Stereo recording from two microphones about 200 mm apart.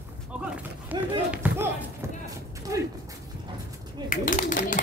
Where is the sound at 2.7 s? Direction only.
15° right (ahead or behind).